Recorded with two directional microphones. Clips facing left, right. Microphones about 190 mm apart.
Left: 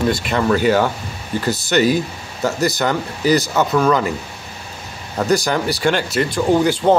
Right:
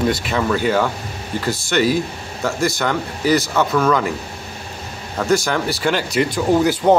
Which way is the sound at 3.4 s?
15° left (ahead or behind).